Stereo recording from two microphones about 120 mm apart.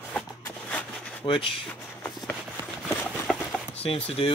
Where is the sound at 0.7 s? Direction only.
10° left (ahead or behind).